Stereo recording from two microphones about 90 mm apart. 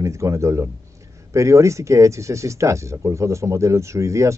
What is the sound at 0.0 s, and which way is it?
Speech, 35° right (ahead or behind).